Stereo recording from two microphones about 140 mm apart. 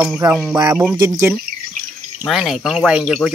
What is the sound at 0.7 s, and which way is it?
Speech, 15° right (ahead or behind).